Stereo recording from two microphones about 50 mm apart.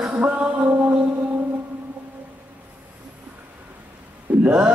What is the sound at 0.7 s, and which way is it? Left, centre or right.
Mantra, right.